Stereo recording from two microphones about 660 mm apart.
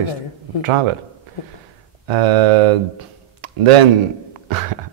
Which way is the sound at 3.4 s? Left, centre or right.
Right.